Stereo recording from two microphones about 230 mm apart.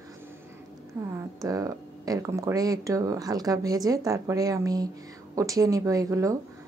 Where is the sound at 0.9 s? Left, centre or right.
Centre.